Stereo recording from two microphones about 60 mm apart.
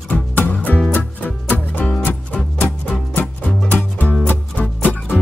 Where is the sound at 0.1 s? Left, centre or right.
Left.